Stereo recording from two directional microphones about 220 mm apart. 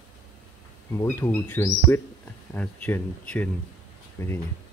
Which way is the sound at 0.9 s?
15° left (ahead or behind).